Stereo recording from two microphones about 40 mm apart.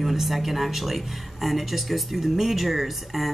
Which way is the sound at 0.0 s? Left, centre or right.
Centre.